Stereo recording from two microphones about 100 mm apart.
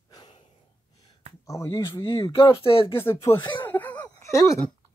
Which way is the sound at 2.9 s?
25° left (ahead or behind).